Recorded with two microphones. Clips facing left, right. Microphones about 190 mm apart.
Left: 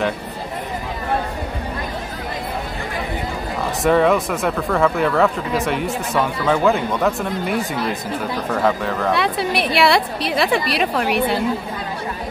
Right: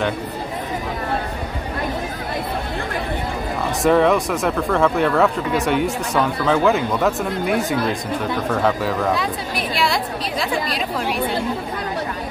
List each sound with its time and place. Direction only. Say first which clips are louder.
3.8 s speech: even; centre (ahead or behind)
9.1 s a woman's voice: left 3 dB; 70° left (ahead or behind)